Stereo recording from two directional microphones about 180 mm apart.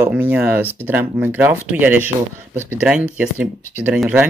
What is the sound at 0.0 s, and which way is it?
Speech, 10° right (ahead or behind).